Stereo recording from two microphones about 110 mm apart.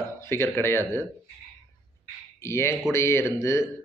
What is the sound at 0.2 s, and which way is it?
Speech, 25° left (ahead or behind).